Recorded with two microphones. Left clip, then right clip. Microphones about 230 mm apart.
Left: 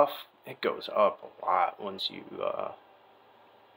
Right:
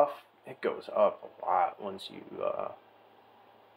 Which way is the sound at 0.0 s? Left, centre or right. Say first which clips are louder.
Left 2 dB; centre.